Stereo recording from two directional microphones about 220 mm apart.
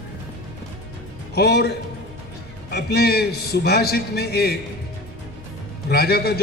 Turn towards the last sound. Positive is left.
turn(degrees=45)  # may be behind; listen again after turning